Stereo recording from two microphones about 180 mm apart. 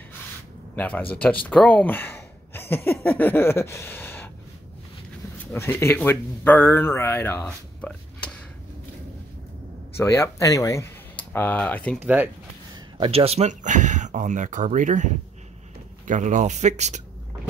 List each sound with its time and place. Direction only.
0.7 s speech: 10° left (ahead or behind)
5.5 s speech: 15° left (ahead or behind)
9.9 s speech: 15° left (ahead or behind)
12.7 s speech: 25° right (ahead or behind)